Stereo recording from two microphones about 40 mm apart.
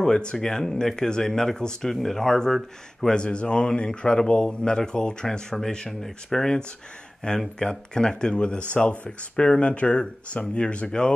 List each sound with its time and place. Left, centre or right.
0.0 s speech: left
3.2 s speech: left
5.9 s speech: centre; by 11.1 s left